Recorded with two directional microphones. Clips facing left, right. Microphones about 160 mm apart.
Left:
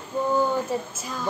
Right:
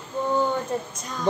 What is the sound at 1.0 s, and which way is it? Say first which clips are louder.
Speech: left 1 dB; 5° left (ahead or behind).